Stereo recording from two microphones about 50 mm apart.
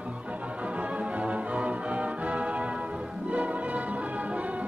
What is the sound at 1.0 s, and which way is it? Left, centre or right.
Music, right.